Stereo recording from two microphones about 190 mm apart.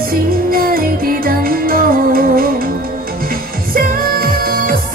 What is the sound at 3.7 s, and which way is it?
Music, 50° right (ahead or behind).